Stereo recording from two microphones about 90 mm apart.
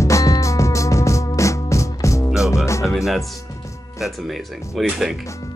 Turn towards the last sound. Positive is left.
turn(degrees=-5)  # may be behind; listen again after turning